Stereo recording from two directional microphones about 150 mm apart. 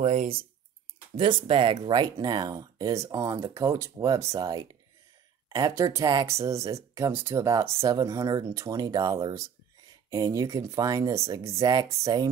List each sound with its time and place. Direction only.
0.0 s speech: 50° right (ahead or behind)
1.1 s speech: 35° right (ahead or behind)